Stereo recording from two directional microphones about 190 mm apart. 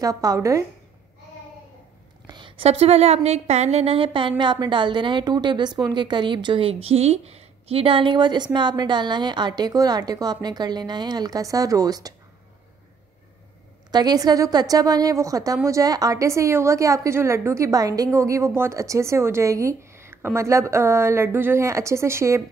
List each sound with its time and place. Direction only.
0.0 s a woman's voice: 20° right (ahead or behind)
2.2 s a sound: 25° right (ahead or behind)
3.3 s a woman's voice: 35° right (ahead or behind); by 12.1 s 20° right (ahead or behind)
13.9 s a woman's voice: 20° right (ahead or behind)